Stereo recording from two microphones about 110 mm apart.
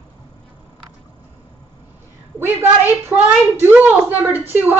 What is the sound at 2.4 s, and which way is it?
A woman's voice, 20° right (ahead or behind).